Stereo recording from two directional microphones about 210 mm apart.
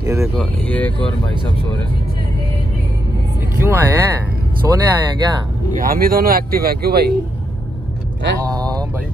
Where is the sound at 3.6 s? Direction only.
10° right (ahead or behind).